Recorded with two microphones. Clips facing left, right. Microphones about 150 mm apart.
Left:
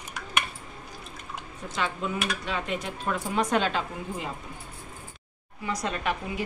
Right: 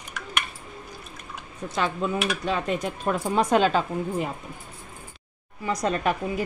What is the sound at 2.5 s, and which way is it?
A woman's voice, 40° right (ahead or behind).